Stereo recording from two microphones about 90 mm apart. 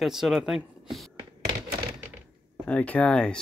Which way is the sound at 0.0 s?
5° right (ahead or behind).